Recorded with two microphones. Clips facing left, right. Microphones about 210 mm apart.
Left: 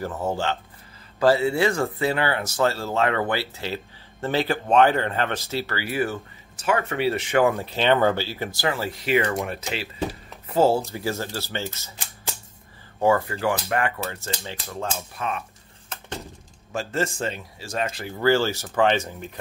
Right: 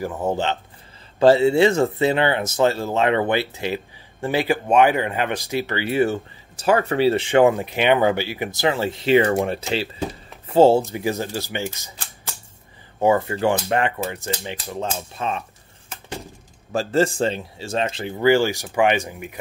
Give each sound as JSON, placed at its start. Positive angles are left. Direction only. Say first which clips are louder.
{"t": 0.0, "sound": "speech", "louder": "right 3 dB", "side_deg": -15}
{"t": 10.9, "sound": "speech", "louder": "right 4 dB", "side_deg": -15}
{"t": 13.0, "sound": "speech", "louder": "right 3 dB", "side_deg": -20}
{"t": 15.0, "sound": "speech", "louder": "right 3 dB", "side_deg": -30}
{"t": 16.7, "sound": "speech", "louder": "right 7 dB", "side_deg": -30}